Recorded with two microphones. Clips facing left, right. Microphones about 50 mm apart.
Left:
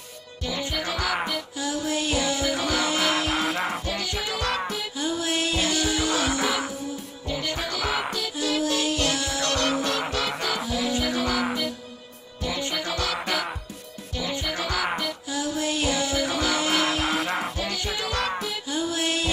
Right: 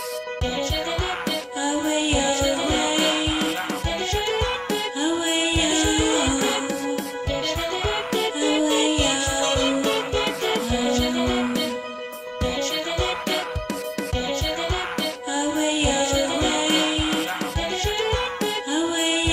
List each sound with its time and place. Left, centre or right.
1.6 s music: centre
5.0 s music: centre
8.4 s music: right
15.3 s music: centre
17.1 s music: centre
18.7 s music: centre